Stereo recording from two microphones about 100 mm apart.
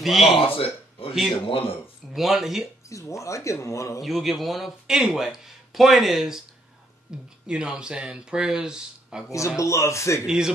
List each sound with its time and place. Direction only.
0.0 s speech: centre (ahead or behind)
0.4 s speech: 65° left (ahead or behind)
2.1 s speech: centre (ahead or behind)
2.9 s speech: 30° left (ahead or behind)
4.0 s speech: centre (ahead or behind)
9.6 s a man's voice: 30° left (ahead or behind)
10.2 s speech: 5° right (ahead or behind)